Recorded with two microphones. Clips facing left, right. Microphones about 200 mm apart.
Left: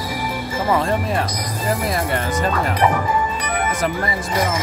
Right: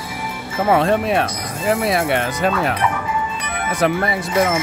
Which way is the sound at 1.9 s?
70° right (ahead or behind).